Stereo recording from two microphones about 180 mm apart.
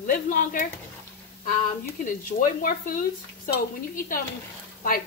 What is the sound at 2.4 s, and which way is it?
A woman's voice, 50° left (ahead or behind).